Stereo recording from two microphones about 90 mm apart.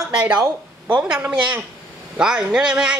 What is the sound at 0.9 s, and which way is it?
Speech, 10° right (ahead or behind).